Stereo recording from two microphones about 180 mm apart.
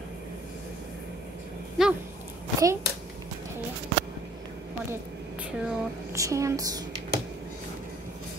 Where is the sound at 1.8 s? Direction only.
Centre (ahead or behind).